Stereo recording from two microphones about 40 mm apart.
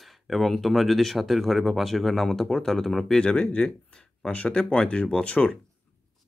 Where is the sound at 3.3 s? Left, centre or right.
Left.